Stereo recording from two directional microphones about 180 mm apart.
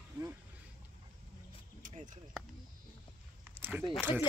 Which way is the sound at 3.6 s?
10° right (ahead or behind).